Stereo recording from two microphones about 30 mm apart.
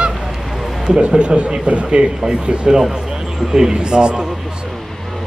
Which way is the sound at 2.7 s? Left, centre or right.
Centre.